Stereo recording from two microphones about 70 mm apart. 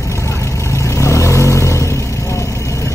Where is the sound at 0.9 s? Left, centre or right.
Left.